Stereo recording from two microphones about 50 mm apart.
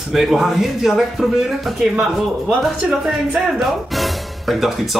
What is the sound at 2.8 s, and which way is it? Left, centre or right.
Speech, right.